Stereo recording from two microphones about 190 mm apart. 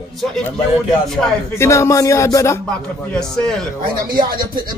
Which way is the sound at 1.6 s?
15° left (ahead or behind).